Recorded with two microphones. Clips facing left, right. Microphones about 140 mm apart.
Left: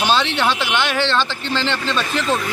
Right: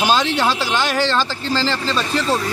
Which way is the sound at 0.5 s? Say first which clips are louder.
Right 1 dB; 35° right (ahead or behind).